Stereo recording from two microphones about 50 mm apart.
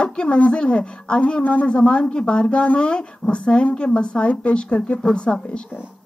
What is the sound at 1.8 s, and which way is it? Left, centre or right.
Speech, centre.